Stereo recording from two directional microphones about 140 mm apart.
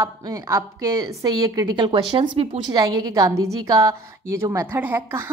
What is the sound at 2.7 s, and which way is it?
A woman's voice, 30° right (ahead or behind).